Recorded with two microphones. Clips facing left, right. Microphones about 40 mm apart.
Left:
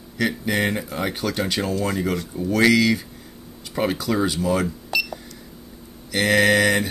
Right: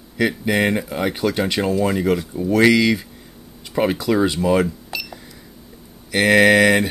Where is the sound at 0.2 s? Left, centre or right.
Centre.